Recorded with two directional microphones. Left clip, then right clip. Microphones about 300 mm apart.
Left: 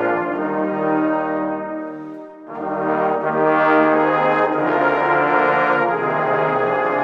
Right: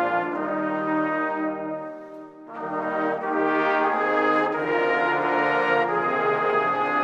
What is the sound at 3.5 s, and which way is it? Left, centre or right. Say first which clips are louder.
Brass instrument: left 9 dB; centre.